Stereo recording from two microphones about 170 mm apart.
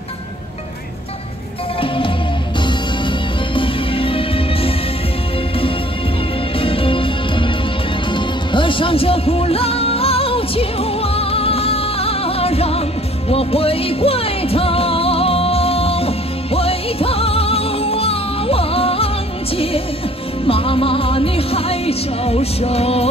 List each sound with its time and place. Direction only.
1.8 s music: 30° left (ahead or behind)
6.6 s music: 30° left (ahead or behind)